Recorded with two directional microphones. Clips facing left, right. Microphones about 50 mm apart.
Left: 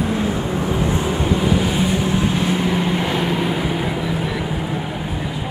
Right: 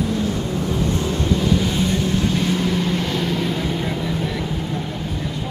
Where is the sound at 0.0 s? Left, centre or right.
Left.